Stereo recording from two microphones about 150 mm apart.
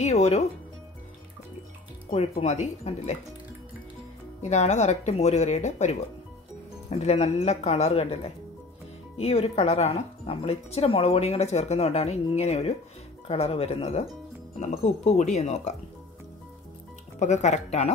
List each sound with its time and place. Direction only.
0.0 s music: 45° left (ahead or behind)
2.0 s speech: 45° left (ahead or behind)
4.4 s speech: 50° left (ahead or behind)
17.2 s speech: 50° left (ahead or behind)